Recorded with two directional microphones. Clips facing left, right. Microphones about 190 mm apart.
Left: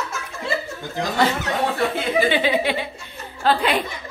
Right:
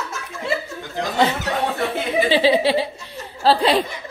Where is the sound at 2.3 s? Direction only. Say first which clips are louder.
Right 4 dB; 35° right (ahead or behind).